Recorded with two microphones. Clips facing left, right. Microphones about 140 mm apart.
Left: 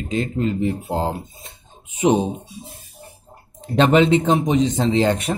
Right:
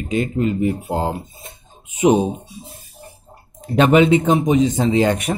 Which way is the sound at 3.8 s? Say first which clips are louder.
Right 2 dB; 10° right (ahead or behind).